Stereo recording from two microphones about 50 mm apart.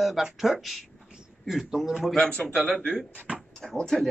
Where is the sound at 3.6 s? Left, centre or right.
Centre.